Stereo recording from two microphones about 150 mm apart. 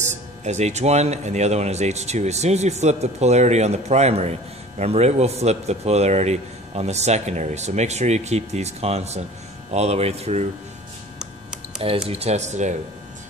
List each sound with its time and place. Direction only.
0.0 s speech: 50° right (ahead or behind)
12.1 s speech: 45° right (ahead or behind)